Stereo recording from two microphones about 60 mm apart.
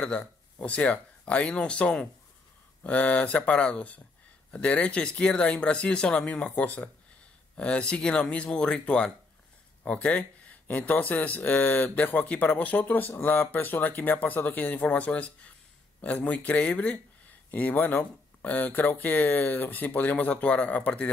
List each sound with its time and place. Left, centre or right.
0.0 s speech: centre